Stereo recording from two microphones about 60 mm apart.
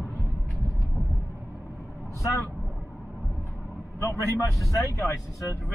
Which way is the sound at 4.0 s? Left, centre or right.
Left.